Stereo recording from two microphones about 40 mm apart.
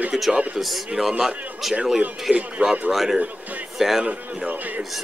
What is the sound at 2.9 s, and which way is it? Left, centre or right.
Speech, centre.